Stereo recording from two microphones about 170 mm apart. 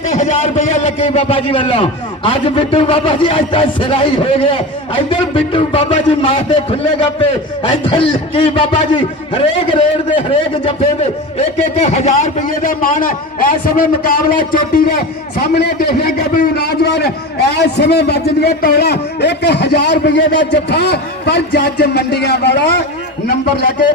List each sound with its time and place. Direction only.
0.1 s a man's voice: 45° left (ahead or behind); by 22.8 s 75° left (ahead or behind)